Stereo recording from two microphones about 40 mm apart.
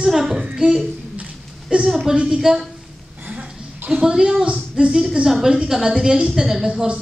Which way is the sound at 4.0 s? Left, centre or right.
Centre.